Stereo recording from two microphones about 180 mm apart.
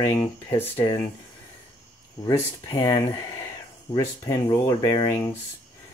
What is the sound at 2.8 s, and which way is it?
Speech, 20° left (ahead or behind).